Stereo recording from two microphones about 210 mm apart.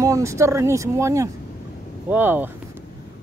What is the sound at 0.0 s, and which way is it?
Speech, 15° right (ahead or behind).